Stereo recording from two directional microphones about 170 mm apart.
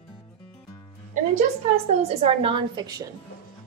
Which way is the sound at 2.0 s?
35° right (ahead or behind).